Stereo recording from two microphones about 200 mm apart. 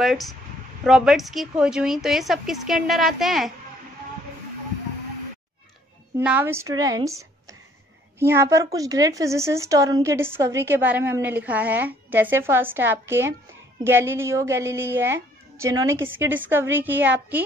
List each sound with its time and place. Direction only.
0.0 s speech: centre (ahead or behind)
6.1 s a woman's voice: 10° right (ahead or behind)